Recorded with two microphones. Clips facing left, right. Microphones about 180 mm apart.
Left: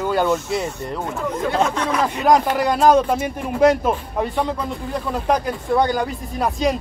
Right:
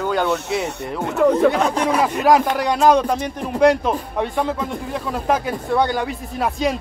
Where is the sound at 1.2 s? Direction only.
65° right (ahead or behind).